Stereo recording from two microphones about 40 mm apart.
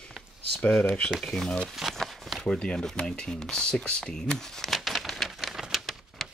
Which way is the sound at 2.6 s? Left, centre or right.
Left.